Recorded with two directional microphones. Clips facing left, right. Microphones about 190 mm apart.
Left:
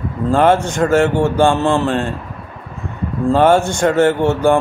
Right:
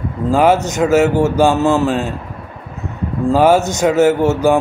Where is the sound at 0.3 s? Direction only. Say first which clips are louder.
Even; 5° right (ahead or behind).